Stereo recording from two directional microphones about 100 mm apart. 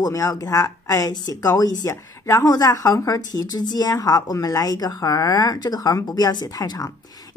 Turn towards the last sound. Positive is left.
turn(degrees=40)  # may be behind; listen again after turning